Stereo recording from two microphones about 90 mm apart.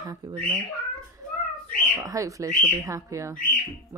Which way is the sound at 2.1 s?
35° right (ahead or behind).